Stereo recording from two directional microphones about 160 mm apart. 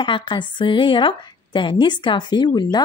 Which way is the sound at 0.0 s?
30° left (ahead or behind).